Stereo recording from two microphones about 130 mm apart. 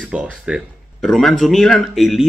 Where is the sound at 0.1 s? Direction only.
10° right (ahead or behind).